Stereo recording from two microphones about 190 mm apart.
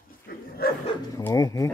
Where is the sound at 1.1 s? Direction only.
15° left (ahead or behind).